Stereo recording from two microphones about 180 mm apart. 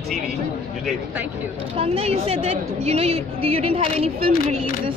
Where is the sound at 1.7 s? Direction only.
35° right (ahead or behind).